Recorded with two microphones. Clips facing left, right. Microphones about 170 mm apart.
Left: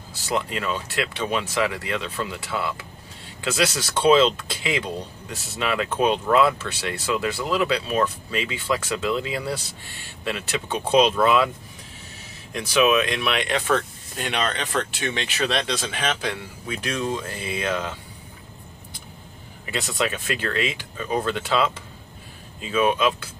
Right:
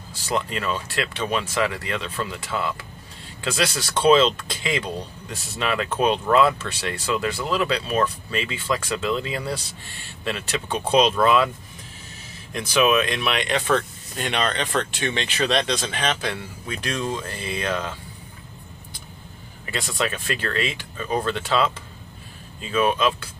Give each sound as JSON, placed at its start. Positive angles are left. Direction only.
{"t": 0.5, "sound": "speech", "side_deg": 10}
{"t": 12.5, "sound": "speech", "side_deg": 0}
{"t": 19.6, "sound": "speech", "side_deg": 10}